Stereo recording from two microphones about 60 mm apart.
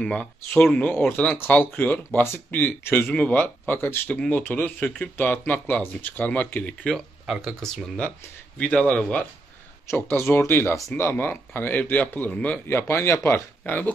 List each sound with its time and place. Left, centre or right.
0.0 s speech: centre; by 4.0 s left
4.1 s speech: centre
4.4 s speech: left
5.1 s speech: left
8.5 s speech: centre
9.8 s speech: left
12.6 s speech: left